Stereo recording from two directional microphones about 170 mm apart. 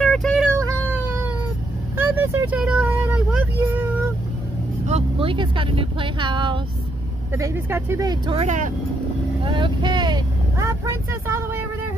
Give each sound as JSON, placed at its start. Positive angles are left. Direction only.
{"t": 0.0, "sound": "a sound", "side_deg": 5}
{"t": 2.0, "sound": "vehicle", "side_deg": -10}
{"t": 4.8, "sound": "speech", "side_deg": -35}
{"t": 7.3, "sound": "speech", "side_deg": -15}
{"t": 8.4, "sound": "speech", "side_deg": -45}
{"t": 9.4, "sound": "speech", "side_deg": -30}
{"t": 11.1, "sound": "speech", "side_deg": -15}